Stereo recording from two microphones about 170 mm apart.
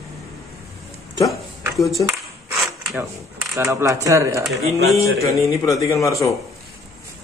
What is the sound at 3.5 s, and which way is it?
Speech, 15° right (ahead or behind).